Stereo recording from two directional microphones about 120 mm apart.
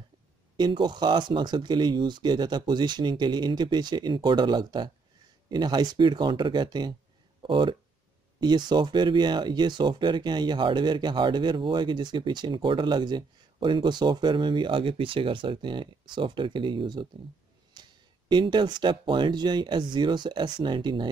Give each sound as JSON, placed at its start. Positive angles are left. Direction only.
{"t": 0.6, "sound": "speech", "side_deg": -40}
{"t": 17.8, "sound": "a sound", "side_deg": -35}
{"t": 18.3, "sound": "speech", "side_deg": -40}